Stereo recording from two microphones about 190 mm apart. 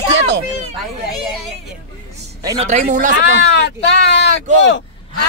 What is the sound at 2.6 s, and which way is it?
Speech, 40° right (ahead or behind).